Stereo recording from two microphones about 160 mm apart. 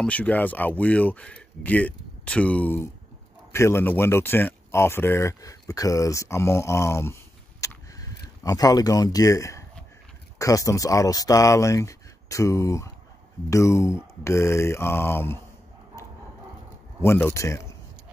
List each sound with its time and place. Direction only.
0.0 s speech: 10° left (ahead or behind)
7.6 s a sound: 20° left (ahead or behind)
10.4 s speech: 20° left (ahead or behind)
17.0 s speech: 15° left (ahead or behind)